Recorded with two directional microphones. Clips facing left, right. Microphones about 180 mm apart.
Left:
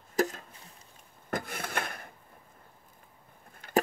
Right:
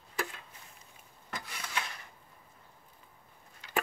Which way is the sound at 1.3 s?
50° left (ahead or behind).